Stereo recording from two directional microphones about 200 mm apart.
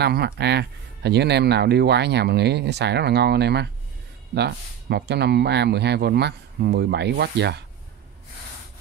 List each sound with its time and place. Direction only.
0.0 s speech: 55° right (ahead or behind)